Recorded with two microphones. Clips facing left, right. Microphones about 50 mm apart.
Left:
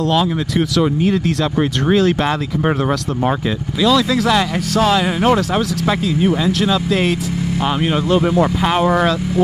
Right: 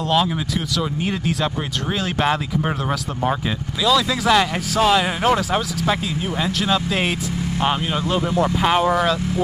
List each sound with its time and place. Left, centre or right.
0.7 s speech: centre
4.1 s speech: centre
8.6 s speech: centre